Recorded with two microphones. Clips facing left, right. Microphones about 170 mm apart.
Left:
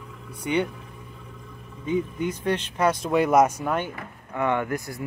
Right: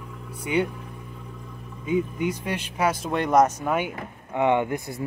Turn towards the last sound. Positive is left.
turn(degrees=-25)  # may be behind; listen again after turning